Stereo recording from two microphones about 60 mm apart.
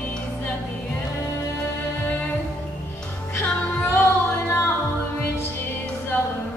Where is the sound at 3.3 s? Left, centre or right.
Left.